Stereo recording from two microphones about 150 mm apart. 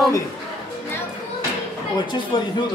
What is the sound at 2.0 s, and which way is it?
Speech, 30° left (ahead or behind).